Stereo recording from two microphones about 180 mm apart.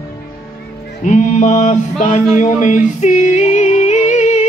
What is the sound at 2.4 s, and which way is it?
Singing, 45° left (ahead or behind).